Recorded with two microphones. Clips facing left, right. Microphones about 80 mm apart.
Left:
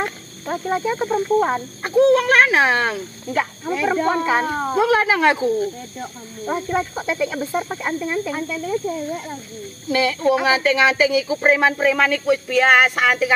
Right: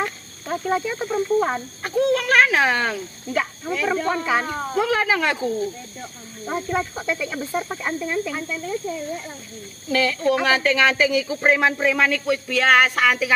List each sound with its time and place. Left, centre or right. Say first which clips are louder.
0.5 s speech: left 2 dB; centre
6.4 s speech: left 2 dB; centre
8.8 s speech: left 3 dB; left
9.8 s speech: left 2 dB; centre